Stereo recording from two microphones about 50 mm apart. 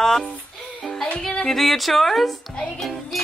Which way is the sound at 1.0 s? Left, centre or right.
Left.